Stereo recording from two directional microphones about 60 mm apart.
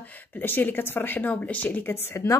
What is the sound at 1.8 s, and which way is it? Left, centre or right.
Speech, left.